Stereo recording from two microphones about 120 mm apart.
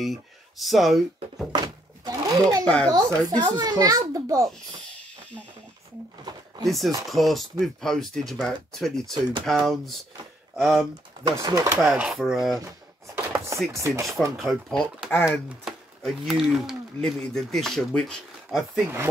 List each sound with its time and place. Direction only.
0.0 s speech: centre (ahead or behind)
2.0 s a sound: 30° right (ahead or behind)
2.6 s a child's voice: 10° left (ahead or behind)
2.9 s a child's voice: 30° right (ahead or behind)
6.6 s speech: centre (ahead or behind)
11.3 s speech: 30° right (ahead or behind)
11.8 s speech: centre (ahead or behind)
12.6 s chopping: 20° right (ahead or behind)
13.7 s speech: 25° right (ahead or behind)
14.4 s a child's voice: 5° left (ahead or behind)
15.7 s a sound: 5° right (ahead or behind)
16.0 s speech: centre (ahead or behind)